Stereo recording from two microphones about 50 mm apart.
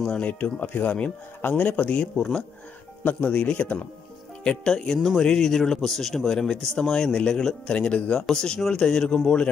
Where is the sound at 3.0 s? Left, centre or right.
Left.